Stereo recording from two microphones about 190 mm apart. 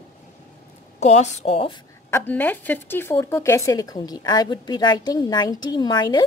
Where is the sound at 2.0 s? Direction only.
10° left (ahead or behind).